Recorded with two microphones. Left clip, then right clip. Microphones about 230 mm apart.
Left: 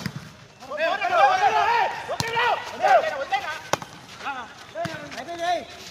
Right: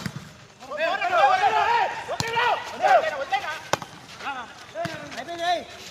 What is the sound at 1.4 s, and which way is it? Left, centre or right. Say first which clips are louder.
Chop: left 1 dB; centre.